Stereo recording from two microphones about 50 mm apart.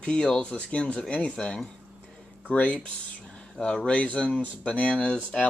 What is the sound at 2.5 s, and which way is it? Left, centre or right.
Speech, left.